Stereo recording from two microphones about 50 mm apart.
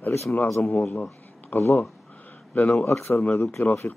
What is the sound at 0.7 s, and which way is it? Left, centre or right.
A man's voice, left.